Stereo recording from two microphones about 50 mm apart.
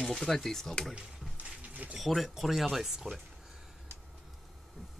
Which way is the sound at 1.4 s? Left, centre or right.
Right.